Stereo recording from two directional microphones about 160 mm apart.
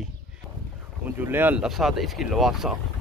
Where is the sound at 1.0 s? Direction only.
10° right (ahead or behind).